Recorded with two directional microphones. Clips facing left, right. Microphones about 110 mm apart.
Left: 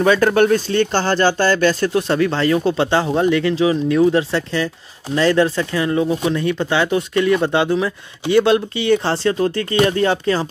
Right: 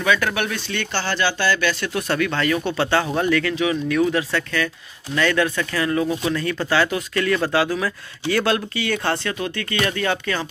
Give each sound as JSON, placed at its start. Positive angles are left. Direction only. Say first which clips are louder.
{"t": 0.0, "sound": "speech", "louder": "left 8 dB", "side_deg": 40}
{"t": 2.0, "sound": "speech", "louder": "left 5 dB", "side_deg": 25}